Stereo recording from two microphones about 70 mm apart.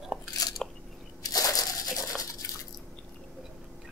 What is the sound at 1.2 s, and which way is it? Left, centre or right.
Crushing, left.